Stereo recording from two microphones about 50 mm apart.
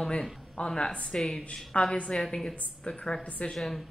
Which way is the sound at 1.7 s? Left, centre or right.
Left.